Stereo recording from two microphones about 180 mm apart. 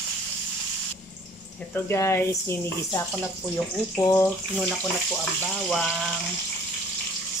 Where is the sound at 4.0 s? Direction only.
15° left (ahead or behind).